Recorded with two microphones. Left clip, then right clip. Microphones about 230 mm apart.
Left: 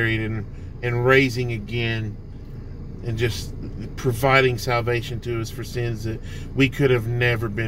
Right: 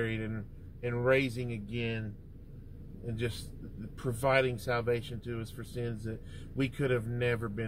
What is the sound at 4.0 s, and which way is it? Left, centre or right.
Speech, centre.